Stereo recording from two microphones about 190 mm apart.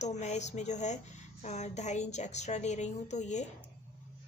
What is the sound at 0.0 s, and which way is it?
A woman's voice, 35° left (ahead or behind).